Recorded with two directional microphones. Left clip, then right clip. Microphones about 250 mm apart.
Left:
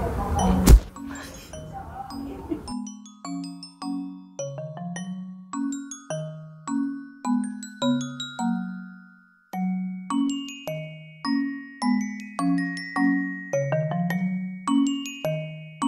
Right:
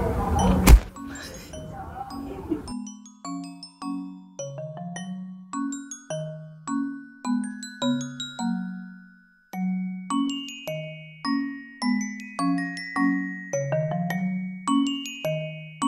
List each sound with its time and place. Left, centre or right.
0.4 s music: centre
7.2 s marimba: centre
9.5 s glockenspiel: centre